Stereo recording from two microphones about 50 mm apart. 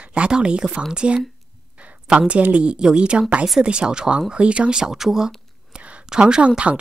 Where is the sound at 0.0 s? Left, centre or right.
Right.